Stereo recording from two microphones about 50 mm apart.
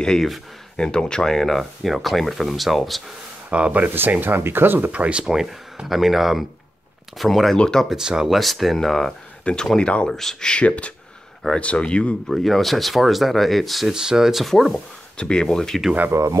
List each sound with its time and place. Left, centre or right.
0.7 s speech: centre
3.4 s speech: right
5.2 s speech: centre
7.5 s speech: centre
7.9 s speech: centre
8.3 s speech: centre
9.4 s speech: left
10.0 s speech: centre
10.5 s speech: left
12.3 s speech: centre
13.9 s speech: centre
15.1 s speech: centre
16.1 s speech: right